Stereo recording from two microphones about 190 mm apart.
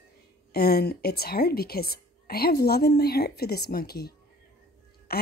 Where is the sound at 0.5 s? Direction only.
55° left (ahead or behind).